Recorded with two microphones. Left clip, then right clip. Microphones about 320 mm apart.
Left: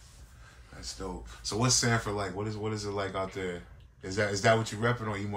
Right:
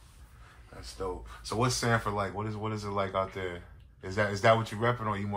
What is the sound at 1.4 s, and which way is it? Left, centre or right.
Speech, centre.